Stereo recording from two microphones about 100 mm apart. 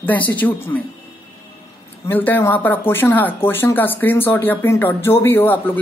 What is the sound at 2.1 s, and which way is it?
Speech, 20° left (ahead or behind).